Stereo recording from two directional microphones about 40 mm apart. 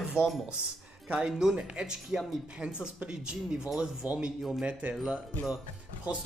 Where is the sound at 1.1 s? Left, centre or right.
Centre.